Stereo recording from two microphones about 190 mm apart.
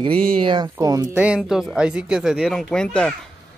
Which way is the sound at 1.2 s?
5° right (ahead or behind).